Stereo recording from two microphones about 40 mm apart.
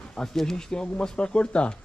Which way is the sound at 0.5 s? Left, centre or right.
Centre.